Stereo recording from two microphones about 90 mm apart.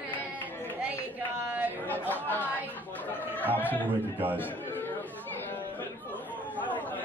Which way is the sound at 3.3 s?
20° left (ahead or behind).